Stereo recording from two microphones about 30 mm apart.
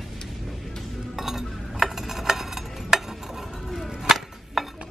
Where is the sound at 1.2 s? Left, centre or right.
Centre.